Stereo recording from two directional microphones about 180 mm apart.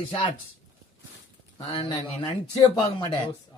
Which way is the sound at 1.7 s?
25° left (ahead or behind).